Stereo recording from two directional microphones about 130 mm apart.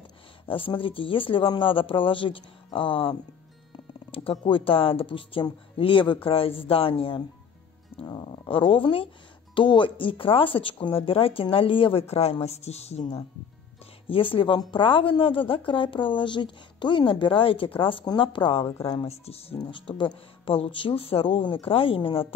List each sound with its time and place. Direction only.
0.5 s speech: 40° left (ahead or behind)
19.6 s speech: 40° left (ahead or behind)